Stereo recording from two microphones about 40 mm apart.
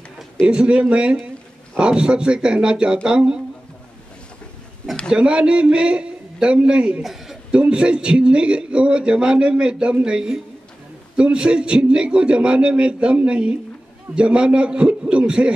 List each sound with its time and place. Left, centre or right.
0.5 s a man's voice: right
5.1 s a man's voice: right
7.0 s a man's voice: centre
7.5 s a man's voice: right